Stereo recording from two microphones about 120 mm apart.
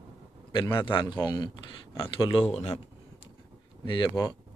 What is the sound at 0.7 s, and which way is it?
A man's voice, 40° left (ahead or behind).